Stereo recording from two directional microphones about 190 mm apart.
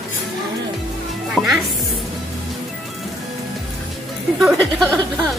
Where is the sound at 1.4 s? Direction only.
5° left (ahead or behind).